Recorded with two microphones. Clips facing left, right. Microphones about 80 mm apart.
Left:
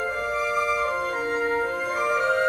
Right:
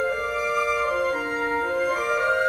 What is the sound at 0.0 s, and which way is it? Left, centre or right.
Music, centre.